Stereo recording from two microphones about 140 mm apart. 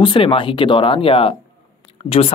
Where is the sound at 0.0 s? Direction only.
35° left (ahead or behind).